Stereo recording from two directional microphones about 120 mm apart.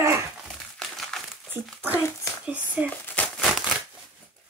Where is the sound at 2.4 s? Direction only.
10° right (ahead or behind).